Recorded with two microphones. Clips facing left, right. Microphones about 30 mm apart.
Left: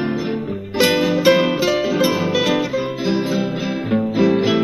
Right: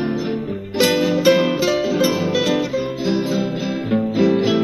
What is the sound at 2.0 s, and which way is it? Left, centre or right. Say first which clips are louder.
Music: left 1 dB; left.